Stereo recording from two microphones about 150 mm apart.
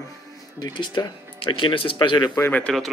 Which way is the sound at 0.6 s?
30° left (ahead or behind).